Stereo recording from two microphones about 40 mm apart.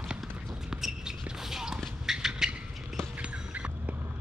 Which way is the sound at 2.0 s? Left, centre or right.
Centre.